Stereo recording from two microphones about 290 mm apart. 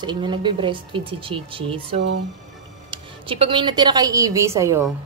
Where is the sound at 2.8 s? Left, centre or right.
Centre.